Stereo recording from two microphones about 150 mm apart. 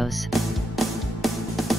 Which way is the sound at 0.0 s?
Centre (ahead or behind).